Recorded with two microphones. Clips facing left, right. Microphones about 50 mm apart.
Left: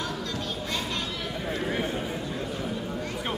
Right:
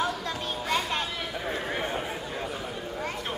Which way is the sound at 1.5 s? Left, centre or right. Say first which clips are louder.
Left 3 dB; centre.